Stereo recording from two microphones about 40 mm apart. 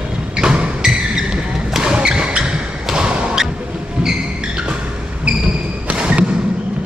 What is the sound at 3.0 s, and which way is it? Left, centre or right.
Thump, right.